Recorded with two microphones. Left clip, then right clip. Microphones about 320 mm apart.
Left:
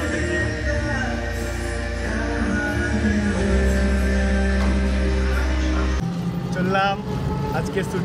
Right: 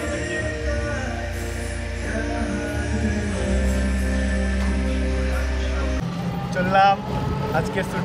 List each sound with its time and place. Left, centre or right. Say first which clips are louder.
6.5 s vehicle: right 4 dB; centre